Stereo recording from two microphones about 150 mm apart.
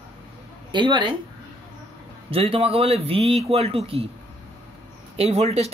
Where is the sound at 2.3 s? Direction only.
40° right (ahead or behind).